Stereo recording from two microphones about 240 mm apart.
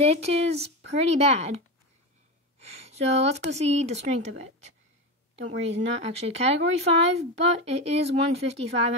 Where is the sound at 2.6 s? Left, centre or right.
Right.